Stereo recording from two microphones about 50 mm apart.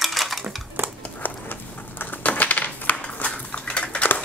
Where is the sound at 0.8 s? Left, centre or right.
Right.